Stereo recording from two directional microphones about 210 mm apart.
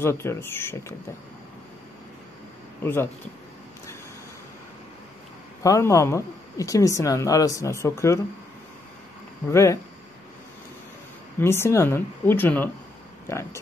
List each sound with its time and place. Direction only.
0.0 s a woman's voice: 10° left (ahead or behind)
2.8 s a woman's voice: 10° left (ahead or behind)
5.6 s a woman's voice: 15° left (ahead or behind)
9.5 s a woman's voice: 15° left (ahead or behind)
11.3 s a woman's voice: 10° left (ahead or behind)